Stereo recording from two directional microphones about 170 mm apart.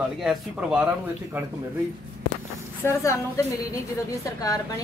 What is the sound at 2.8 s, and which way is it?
A woman's voice, 15° left (ahead or behind).